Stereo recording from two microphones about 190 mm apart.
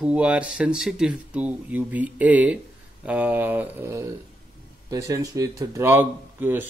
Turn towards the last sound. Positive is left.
turn(degrees=-10)  # may be behind; listen again after turning